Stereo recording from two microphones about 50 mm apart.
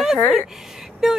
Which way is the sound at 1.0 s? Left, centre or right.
Centre.